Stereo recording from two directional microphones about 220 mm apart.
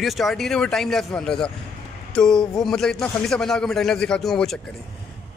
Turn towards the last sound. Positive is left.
turn(degrees=0)  # may be behind; listen again after turning